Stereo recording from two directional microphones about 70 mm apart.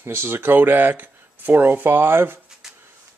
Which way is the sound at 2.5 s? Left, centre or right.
Centre.